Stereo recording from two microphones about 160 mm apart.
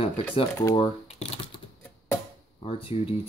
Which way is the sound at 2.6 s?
35° left (ahead or behind).